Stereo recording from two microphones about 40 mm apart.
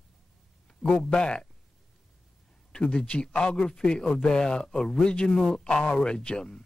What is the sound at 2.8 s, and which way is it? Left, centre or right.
Speech, left.